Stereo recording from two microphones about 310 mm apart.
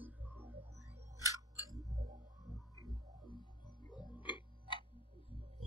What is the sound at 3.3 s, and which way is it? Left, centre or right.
Music, centre.